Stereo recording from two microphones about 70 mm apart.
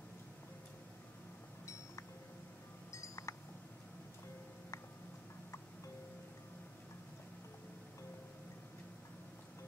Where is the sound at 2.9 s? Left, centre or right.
Left.